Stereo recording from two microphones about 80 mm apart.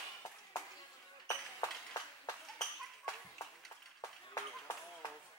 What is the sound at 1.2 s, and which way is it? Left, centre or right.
Ping, left.